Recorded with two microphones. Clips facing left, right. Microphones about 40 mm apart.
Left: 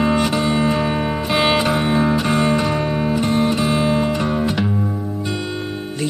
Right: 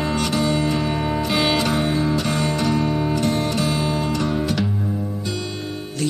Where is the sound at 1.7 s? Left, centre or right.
Left.